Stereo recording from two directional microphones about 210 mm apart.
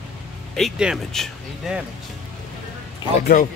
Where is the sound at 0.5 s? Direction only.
Centre (ahead or behind).